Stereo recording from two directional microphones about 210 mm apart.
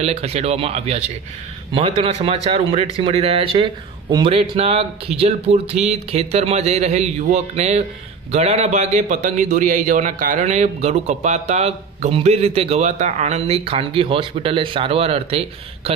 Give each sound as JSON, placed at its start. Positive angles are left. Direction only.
{"t": 0.0, "sound": "a man's voice", "side_deg": -30}